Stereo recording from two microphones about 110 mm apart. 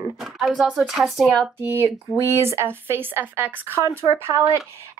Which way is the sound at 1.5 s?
20° right (ahead or behind).